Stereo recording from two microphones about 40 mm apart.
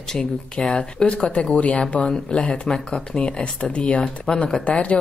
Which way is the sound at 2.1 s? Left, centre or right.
Left.